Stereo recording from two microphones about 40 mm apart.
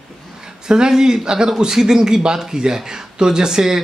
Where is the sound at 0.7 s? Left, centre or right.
Centre.